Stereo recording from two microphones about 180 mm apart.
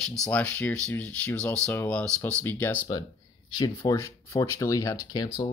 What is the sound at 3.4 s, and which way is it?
Speech, 25° left (ahead or behind).